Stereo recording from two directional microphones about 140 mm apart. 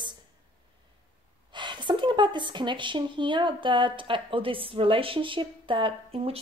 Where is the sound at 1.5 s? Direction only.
35° right (ahead or behind).